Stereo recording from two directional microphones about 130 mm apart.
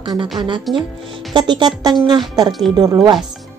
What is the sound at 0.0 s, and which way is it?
Speech, 35° right (ahead or behind).